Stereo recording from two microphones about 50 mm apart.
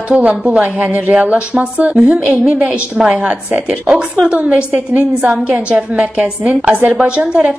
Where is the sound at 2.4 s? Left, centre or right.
Centre.